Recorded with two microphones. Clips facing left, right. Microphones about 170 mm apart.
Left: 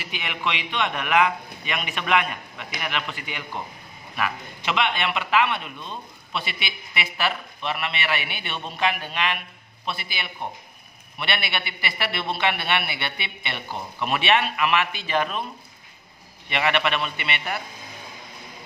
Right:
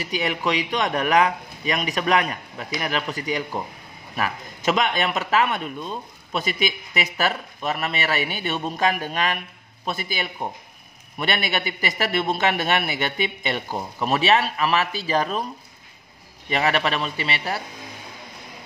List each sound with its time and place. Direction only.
0.0 s a man's voice: 40° right (ahead or behind)
16.4 s a man's voice: 40° right (ahead or behind)